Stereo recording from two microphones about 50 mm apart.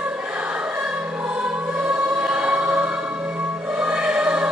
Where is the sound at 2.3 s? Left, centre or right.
Right.